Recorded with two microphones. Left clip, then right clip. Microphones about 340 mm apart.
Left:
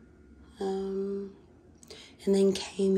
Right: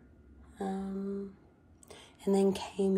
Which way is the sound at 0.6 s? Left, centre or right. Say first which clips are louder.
Left 7 dB; centre.